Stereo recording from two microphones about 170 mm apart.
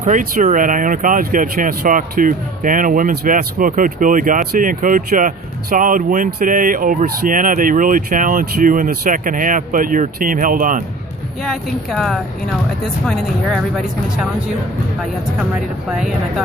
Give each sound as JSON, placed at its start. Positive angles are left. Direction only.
{"t": 0.0, "sound": "speech", "side_deg": -50}
{"t": 11.4, "sound": "speech", "side_deg": 0}